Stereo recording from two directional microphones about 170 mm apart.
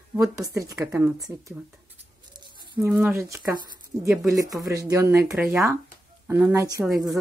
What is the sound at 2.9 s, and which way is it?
Speech, 10° right (ahead or behind).